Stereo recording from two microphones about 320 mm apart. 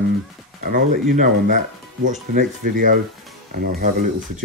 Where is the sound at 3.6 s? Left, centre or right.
Right.